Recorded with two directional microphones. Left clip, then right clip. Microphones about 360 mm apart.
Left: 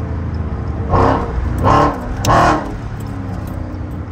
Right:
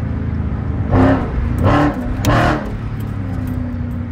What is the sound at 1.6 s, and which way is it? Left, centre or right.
Vehicle, left.